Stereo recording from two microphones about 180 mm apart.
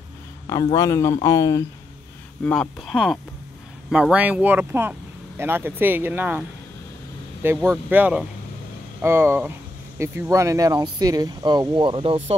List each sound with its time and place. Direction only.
0.5 s speech: 20° left (ahead or behind)
2.4 s speech: 5° left (ahead or behind)
7.4 s speech: 10° right (ahead or behind); by 12.4 s 30° right (ahead or behind)